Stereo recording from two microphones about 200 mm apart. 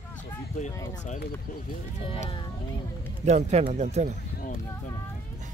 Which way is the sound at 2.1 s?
25° left (ahead or behind).